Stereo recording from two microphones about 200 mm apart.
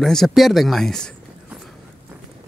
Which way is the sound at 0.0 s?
Centre (ahead or behind).